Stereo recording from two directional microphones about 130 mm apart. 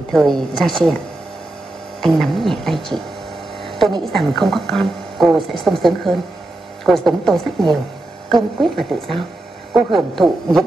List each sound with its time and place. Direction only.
0.1 s a woman's voice: 5° left (ahead or behind)
2.0 s speech: centre (ahead or behind)
3.6 s a sound: centre (ahead or behind)
4.0 s a woman's voice: centre (ahead or behind)
8.5 s a woman's voice: centre (ahead or behind)